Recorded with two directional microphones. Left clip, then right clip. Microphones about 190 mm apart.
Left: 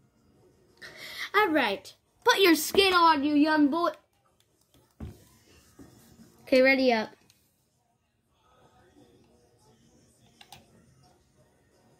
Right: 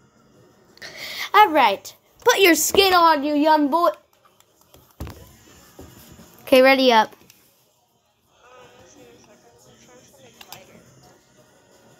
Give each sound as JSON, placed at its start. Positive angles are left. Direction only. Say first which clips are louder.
{"t": 0.7, "sound": "a sound", "louder": "right 8 dB", "side_deg": 10}
{"t": 2.2, "sound": "a woman's voice", "louder": "right 6 dB", "side_deg": 25}
{"t": 6.4, "sound": "a woman's voice", "louder": "right 8 dB", "side_deg": 0}